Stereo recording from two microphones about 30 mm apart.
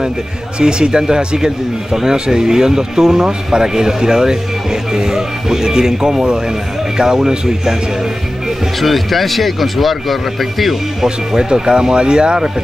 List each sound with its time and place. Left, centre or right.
0.6 s speech: right
8.8 s speech: centre
11.1 s speech: right